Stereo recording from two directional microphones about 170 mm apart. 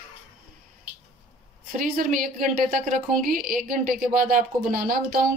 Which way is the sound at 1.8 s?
50° right (ahead or behind).